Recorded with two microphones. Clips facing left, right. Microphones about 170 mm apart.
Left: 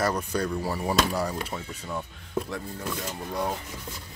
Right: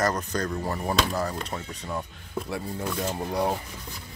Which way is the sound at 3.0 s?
30° right (ahead or behind).